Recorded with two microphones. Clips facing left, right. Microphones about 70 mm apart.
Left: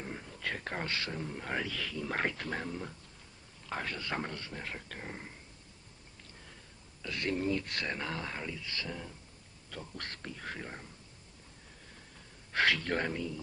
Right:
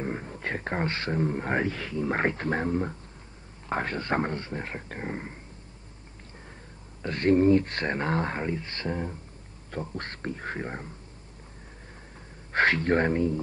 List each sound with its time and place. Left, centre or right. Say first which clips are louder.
0.0 s speech: right 8 dB; right
7.0 s speech: right 12 dB; right
12.5 s speech: right 7 dB; right